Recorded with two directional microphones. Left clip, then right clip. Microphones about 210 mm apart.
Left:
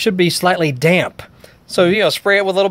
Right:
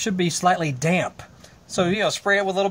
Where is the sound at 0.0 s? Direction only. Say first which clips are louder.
Left 7 dB; 55° left (ahead or behind).